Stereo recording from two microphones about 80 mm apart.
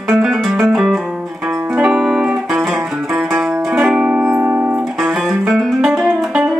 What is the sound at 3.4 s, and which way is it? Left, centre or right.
Music, centre.